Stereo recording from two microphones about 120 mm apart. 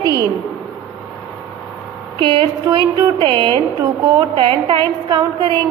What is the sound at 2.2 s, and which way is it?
Speech, 40° right (ahead or behind).